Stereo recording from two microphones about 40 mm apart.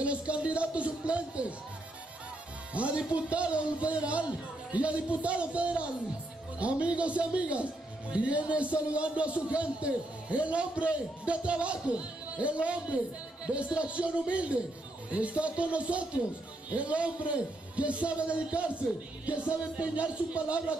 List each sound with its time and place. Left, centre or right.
0.0 s a man's voice: right
2.7 s a man's voice: right